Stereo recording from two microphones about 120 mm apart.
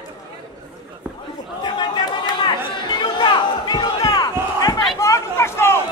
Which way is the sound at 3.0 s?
40° left (ahead or behind).